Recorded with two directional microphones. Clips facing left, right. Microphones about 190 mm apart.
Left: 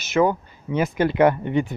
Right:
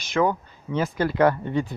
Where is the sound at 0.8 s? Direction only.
20° left (ahead or behind).